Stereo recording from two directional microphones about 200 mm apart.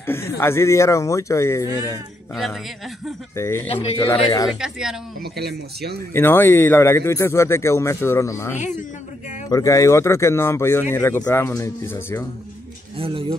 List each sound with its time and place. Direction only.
0.0 s speech: 10° left (ahead or behind)
3.3 s speech: 10° left (ahead or behind)
4.6 s speech: 5° right (ahead or behind)
5.2 s speech: 55° right (ahead or behind)
6.1 s speech: 10° left (ahead or behind)
12.9 s speech: 25° right (ahead or behind)